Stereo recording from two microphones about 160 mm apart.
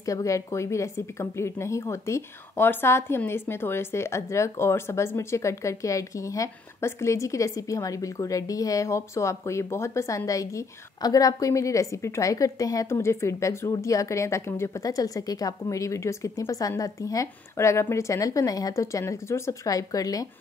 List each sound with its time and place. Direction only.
0.0 s a woman's voice: 20° left (ahead or behind)